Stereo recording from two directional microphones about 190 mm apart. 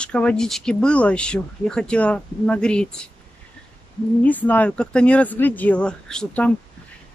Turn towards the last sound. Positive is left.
turn(degrees=5)  # may be behind; listen again after turning